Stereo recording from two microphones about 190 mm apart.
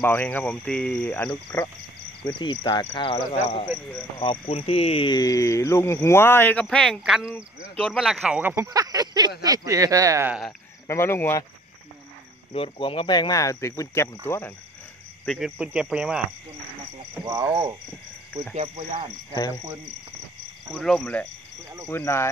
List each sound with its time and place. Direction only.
0.0 s speech: 10° left (ahead or behind)
2.2 s speech: 25° left (ahead or behind); by 8.6 s 10° right (ahead or behind)
8.6 s speech: 20° right (ahead or behind)
10.9 s speech: 10° left (ahead or behind)
12.5 s speech: 30° left (ahead or behind)
15.2 s speech: centre (ahead or behind)
18.5 s speech: 35° right (ahead or behind)
19.3 s speech: 20° left (ahead or behind)
20.7 s speech: centre (ahead or behind)
21.8 s speech: 15° left (ahead or behind)